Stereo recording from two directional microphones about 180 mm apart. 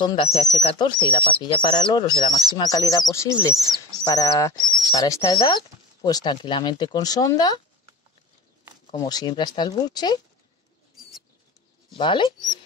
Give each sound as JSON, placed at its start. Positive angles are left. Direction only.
{"t": 0.0, "sound": "speech", "side_deg": 30}
{"t": 8.9, "sound": "speech", "side_deg": 20}
{"t": 12.0, "sound": "speech", "side_deg": 25}